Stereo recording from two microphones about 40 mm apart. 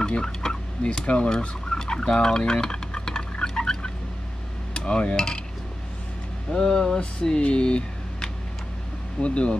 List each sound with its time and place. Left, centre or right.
0.0 s fowl: centre
4.7 s dishes: left
6.6 s speech: centre
9.2 s dishes: left